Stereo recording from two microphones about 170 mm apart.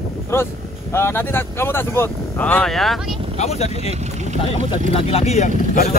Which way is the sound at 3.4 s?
40° left (ahead or behind).